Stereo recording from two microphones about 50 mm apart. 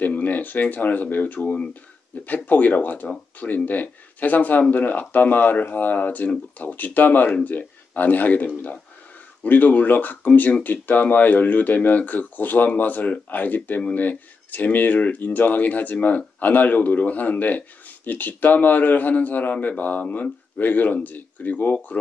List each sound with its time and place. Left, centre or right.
0.0 s speech: left